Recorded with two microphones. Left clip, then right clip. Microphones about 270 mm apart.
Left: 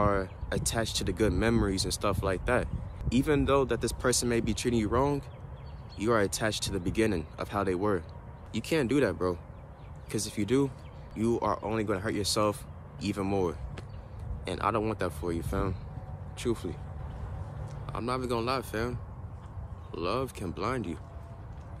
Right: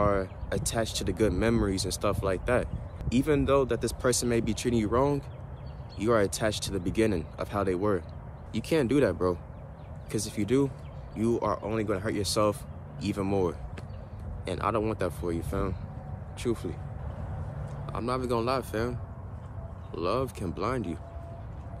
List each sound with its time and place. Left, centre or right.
0.0 s speech: centre
17.8 s speech: centre